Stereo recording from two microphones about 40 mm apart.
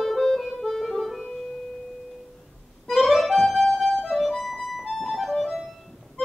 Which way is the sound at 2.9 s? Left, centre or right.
Centre.